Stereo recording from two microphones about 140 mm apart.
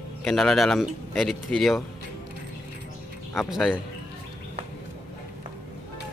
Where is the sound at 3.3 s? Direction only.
Centre (ahead or behind).